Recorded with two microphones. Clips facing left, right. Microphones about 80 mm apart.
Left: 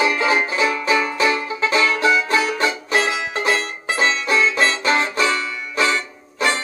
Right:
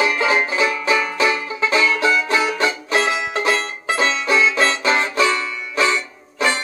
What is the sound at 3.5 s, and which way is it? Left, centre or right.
Music, left.